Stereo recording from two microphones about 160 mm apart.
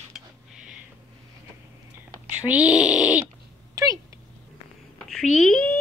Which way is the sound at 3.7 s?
20° right (ahead or behind).